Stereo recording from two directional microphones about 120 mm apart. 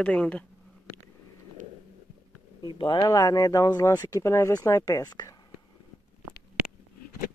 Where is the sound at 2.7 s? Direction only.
40° left (ahead or behind).